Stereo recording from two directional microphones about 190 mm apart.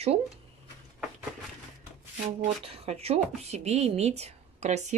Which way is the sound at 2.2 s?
30° right (ahead or behind).